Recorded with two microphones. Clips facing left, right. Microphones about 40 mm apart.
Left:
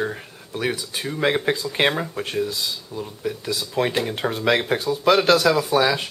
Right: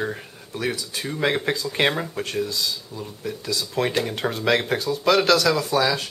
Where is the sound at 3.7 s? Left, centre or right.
Centre.